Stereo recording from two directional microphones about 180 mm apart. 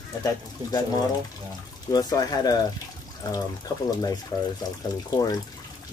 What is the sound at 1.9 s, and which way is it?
Speech, 20° left (ahead or behind).